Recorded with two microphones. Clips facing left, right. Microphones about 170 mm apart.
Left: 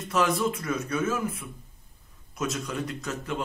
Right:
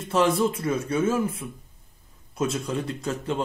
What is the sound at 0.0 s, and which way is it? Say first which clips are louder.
A man's voice: right 4 dB; 30° right (ahead or behind).